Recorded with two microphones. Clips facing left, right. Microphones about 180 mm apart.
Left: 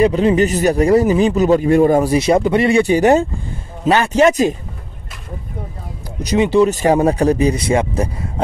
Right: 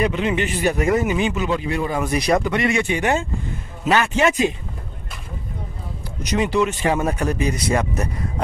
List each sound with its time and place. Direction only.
0.0 s speech: 35° left (ahead or behind)
2.0 s speech: 25° left (ahead or behind)
6.2 s speech: 25° left (ahead or behind)
6.7 s speech: 40° left (ahead or behind)